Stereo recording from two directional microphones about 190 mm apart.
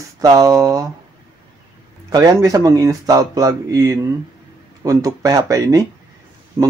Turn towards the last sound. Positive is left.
turn(degrees=-15)  # may be behind; listen again after turning